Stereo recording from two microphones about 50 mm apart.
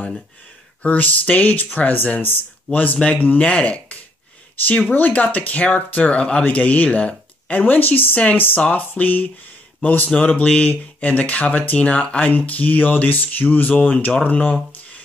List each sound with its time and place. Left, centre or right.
0.8 s speech: left